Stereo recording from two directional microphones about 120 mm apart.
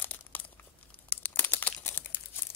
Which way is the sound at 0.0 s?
15° left (ahead or behind).